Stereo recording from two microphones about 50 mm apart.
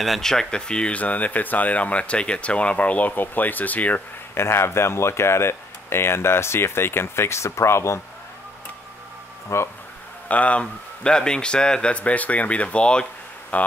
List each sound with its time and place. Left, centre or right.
0.0 s speech: centre
1.0 s speech: left
4.4 s speech: left
9.5 s speech: left
10.2 s a man's voice: left